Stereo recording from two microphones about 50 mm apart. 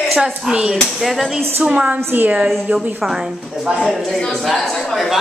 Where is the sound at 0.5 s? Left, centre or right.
Centre.